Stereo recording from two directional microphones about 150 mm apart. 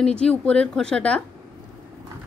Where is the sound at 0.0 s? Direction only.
5° left (ahead or behind).